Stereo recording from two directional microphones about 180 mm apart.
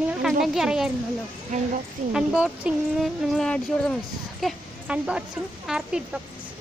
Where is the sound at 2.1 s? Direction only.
5° right (ahead or behind).